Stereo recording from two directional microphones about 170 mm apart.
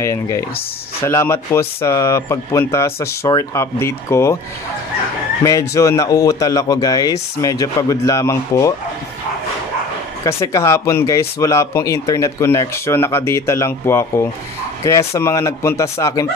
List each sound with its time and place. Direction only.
0.0 s speech: 15° left (ahead or behind)
5.4 s speech: 20° left (ahead or behind)
10.2 s speech: 20° left (ahead or behind)